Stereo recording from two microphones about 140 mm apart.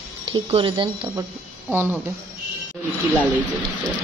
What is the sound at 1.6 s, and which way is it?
Speech, 15° right (ahead or behind).